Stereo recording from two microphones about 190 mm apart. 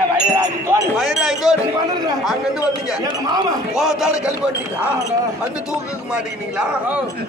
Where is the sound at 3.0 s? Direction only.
20° right (ahead or behind).